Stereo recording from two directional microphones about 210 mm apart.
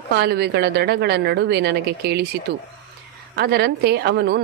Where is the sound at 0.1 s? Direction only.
50° right (ahead or behind).